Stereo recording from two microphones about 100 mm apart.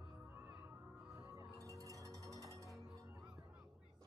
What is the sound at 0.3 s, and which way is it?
Music, 20° right (ahead or behind).